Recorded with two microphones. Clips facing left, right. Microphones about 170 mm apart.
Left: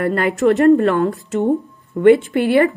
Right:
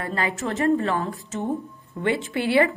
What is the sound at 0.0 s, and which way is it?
A woman's voice, 60° left (ahead or behind).